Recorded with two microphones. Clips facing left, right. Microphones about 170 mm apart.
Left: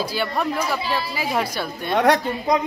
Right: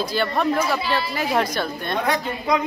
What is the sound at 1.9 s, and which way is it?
Speech, 75° left (ahead or behind).